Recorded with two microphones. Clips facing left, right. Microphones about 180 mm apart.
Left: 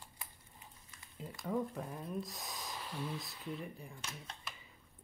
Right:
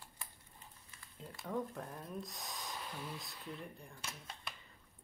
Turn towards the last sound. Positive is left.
turn(degrees=0)  # may be behind; listen again after turning